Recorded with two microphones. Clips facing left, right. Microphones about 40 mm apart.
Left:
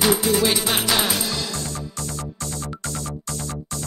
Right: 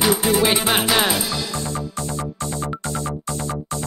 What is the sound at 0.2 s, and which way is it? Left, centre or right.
Music, right.